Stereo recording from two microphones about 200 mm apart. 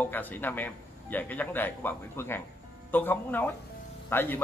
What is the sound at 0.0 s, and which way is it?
A man's voice, 10° left (ahead or behind).